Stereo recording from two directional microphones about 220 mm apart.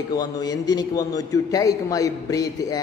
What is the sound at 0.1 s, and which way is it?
A man's voice, 20° left (ahead or behind).